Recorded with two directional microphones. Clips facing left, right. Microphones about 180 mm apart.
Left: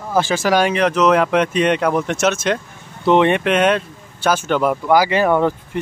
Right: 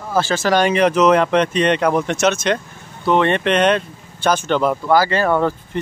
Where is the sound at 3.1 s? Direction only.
15° left (ahead or behind).